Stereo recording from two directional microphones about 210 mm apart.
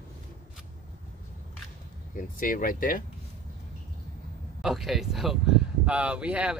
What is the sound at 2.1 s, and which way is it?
Speech, 40° left (ahead or behind).